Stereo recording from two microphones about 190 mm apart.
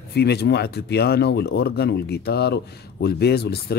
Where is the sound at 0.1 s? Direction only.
60° left (ahead or behind).